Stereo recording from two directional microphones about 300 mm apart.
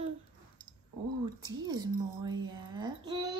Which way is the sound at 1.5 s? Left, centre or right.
Centre.